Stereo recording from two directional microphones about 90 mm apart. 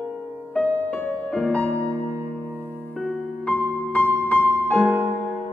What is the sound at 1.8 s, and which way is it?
Music, 25° right (ahead or behind).